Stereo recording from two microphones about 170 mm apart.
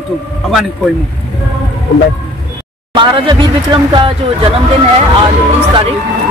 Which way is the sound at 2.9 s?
30° right (ahead or behind).